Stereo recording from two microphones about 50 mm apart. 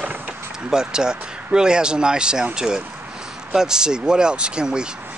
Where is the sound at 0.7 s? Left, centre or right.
Centre.